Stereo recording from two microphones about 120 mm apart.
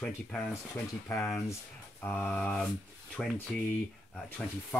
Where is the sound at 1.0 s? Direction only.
25° left (ahead or behind).